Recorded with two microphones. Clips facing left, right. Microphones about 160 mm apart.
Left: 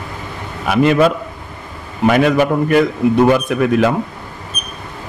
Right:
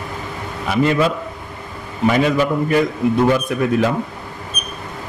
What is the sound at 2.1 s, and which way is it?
A man's voice, 65° left (ahead or behind).